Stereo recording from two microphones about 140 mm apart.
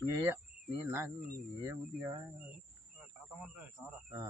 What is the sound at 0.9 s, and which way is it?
Speech, 15° right (ahead or behind).